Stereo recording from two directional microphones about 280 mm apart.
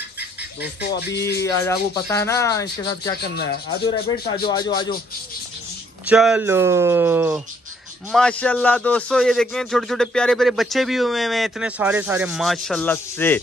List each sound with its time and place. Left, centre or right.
0.4 s speech: left
1.4 s speech: centre
3.2 s speech: left
4.5 s speech: centre
6.0 s speech: centre
8.1 s a man's voice: centre